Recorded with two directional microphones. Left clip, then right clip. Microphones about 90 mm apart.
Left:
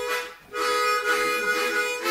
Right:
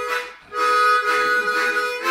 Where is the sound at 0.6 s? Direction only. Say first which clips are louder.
Right 6 dB; centre (ahead or behind).